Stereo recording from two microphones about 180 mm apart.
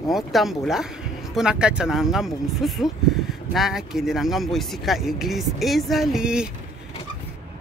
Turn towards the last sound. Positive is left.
turn(degrees=-5)  # may be behind; listen again after turning